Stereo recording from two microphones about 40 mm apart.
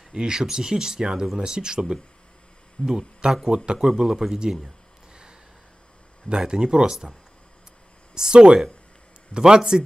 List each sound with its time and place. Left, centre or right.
0.1 s speech: centre
4.6 s a sound: right
6.2 s speech: right